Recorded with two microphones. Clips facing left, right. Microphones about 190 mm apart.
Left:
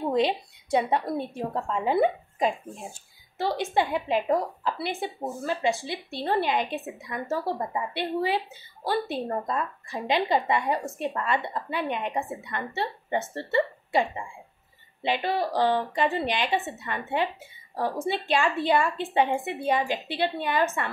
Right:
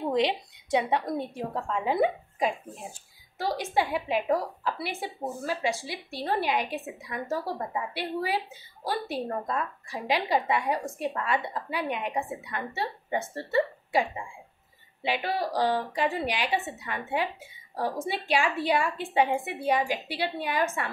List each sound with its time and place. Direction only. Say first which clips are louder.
0.1 s a sound: left 1 dB; 15° right (ahead or behind)
1.1 s a woman's voice: left 2 dB; 15° right (ahead or behind)
15.0 s a woman's voice: left 2 dB; 10° right (ahead or behind)